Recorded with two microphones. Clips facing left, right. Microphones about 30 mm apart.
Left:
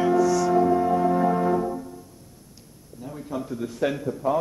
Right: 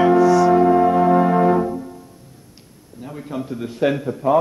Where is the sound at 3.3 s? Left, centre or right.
Right.